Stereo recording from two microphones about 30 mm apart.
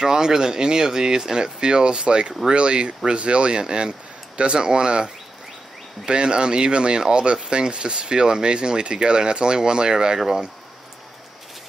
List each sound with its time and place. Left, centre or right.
0.0 s speech: right